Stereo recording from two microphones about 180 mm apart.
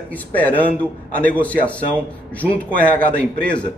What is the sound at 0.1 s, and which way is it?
Speech, 10° left (ahead or behind).